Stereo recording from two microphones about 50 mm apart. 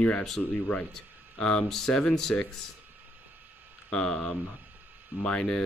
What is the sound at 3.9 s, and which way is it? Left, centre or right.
Speech, centre.